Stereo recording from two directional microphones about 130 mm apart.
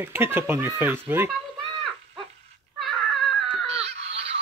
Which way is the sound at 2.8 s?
Centre (ahead or behind).